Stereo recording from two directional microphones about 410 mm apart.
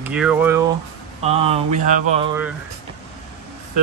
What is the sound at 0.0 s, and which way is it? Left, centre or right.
Speech, centre.